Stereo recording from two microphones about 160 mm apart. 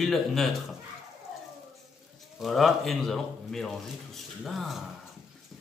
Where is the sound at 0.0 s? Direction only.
Centre (ahead or behind).